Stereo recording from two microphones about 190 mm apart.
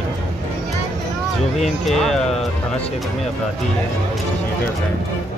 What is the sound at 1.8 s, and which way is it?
Speech, centre (ahead or behind).